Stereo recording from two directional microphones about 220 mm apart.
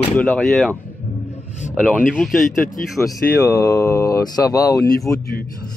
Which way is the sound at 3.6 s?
15° left (ahead or behind).